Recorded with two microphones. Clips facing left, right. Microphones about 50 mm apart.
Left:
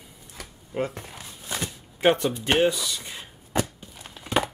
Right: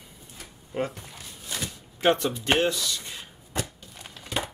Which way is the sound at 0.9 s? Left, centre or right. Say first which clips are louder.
Left 3 dB; left.